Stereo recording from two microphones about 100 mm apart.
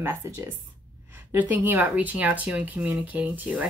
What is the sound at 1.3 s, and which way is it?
Speech, 20° right (ahead or behind).